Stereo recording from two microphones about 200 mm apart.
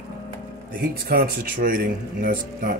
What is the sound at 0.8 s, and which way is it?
Speech, 50° right (ahead or behind).